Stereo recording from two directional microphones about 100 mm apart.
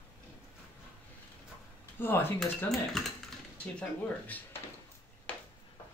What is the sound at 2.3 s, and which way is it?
Speech, 5° left (ahead or behind).